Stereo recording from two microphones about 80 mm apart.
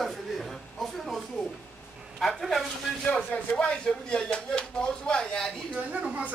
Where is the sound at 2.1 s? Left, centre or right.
Centre.